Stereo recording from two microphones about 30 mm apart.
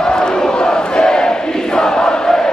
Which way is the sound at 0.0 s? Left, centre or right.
Left.